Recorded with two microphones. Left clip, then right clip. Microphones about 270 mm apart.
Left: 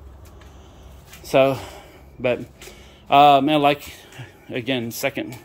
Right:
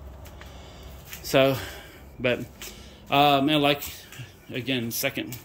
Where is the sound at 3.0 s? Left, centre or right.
Centre.